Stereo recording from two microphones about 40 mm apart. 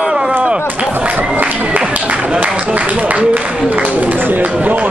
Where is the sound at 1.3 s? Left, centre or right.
Right.